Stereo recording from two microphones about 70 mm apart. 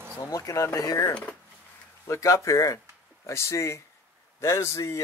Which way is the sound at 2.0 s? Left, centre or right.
Left.